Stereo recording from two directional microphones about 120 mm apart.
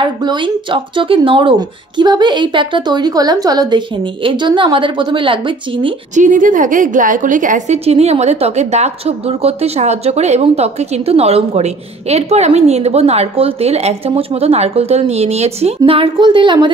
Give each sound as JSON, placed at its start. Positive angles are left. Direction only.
{"t": 0.0, "sound": "speech", "side_deg": -40}
{"t": 6.1, "sound": "a woman's voice", "side_deg": -90}